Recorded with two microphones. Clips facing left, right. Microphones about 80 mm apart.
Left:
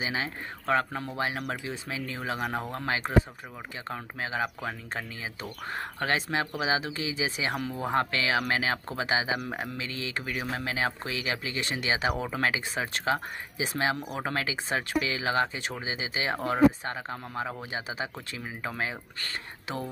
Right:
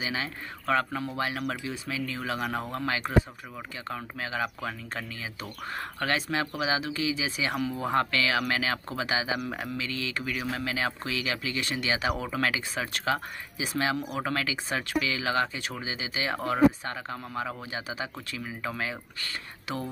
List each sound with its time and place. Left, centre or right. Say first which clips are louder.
0.0 s speech: left 1 dB; left